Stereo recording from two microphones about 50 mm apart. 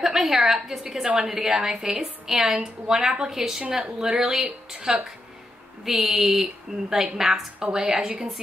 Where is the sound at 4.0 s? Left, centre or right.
Centre.